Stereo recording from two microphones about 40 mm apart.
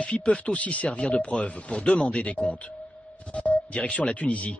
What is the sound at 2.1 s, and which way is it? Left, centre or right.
Speech, left.